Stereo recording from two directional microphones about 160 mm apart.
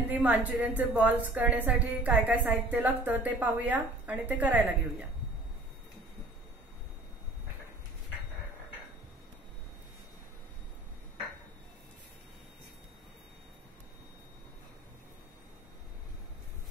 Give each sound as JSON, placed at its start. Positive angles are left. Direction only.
{"t": 0.1, "sound": "a woman's voice", "side_deg": -10}